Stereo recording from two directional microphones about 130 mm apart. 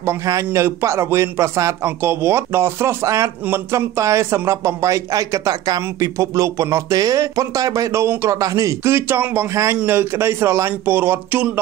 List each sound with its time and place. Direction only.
0.0 s a man's voice: 20° right (ahead or behind)